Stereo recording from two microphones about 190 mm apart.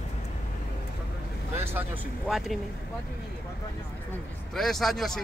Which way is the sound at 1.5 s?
10° right (ahead or behind).